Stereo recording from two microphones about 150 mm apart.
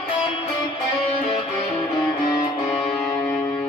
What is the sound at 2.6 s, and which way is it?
Music, centre (ahead or behind).